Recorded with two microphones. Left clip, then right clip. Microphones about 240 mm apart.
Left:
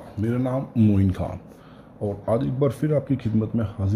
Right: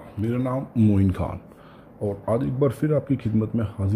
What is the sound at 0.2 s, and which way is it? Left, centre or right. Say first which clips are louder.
Speech: left 1 dB; centre.